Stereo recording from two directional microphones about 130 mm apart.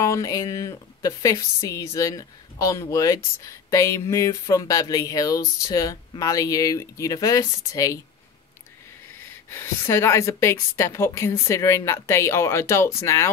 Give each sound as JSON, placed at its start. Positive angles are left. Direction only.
{"t": 0.0, "sound": "a woman's voice", "side_deg": 25}
{"t": 9.5, "sound": "a woman's voice", "side_deg": 20}